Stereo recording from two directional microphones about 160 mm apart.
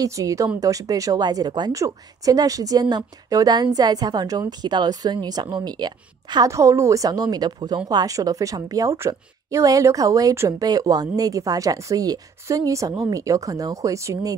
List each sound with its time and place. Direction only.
0.0 s a woman's voice: 20° right (ahead or behind)